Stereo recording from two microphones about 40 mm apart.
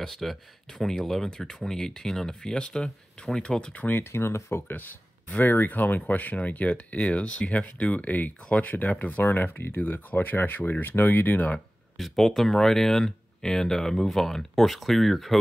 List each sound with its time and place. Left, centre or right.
0.0 s speech: centre
3.9 s speech: left
5.4 s speech: left
12.2 s speech: centre